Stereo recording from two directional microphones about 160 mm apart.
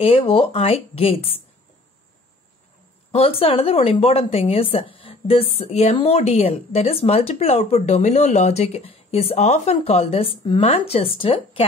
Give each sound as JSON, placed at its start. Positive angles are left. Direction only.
{"t": 0.0, "sound": "a woman's voice", "side_deg": 35}
{"t": 3.1, "sound": "a woman's voice", "side_deg": 40}